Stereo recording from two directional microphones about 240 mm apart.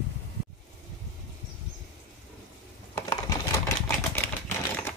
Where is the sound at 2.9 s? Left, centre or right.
Centre.